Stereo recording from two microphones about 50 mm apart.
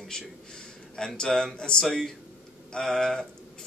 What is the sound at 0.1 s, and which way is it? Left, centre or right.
A man's voice, centre.